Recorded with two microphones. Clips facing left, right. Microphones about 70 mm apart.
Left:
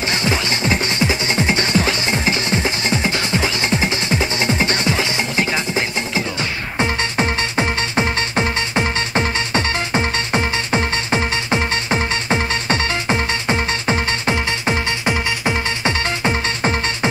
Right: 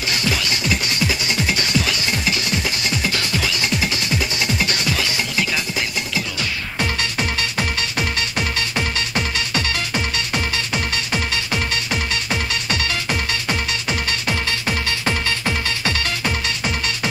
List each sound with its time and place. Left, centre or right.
0.1 s music: left